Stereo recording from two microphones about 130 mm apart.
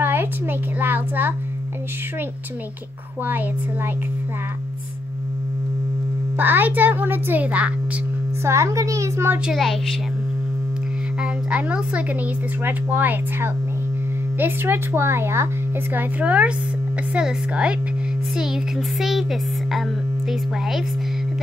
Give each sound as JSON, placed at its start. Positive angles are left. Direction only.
{"t": 0.0, "sound": "a child's voice", "side_deg": -15}
{"t": 3.3, "sound": "speech", "side_deg": -15}
{"t": 6.3, "sound": "speech", "side_deg": -15}
{"t": 8.5, "sound": "speech", "side_deg": -20}
{"t": 9.5, "sound": "speech", "side_deg": 0}
{"t": 11.1, "sound": "speech", "side_deg": -10}